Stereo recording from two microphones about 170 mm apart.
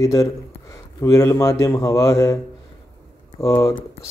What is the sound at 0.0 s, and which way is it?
Speech, 20° left (ahead or behind).